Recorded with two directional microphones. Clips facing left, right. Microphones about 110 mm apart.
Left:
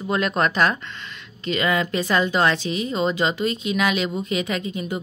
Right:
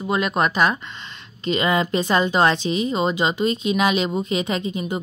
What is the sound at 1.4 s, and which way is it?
Speech, 25° right (ahead or behind).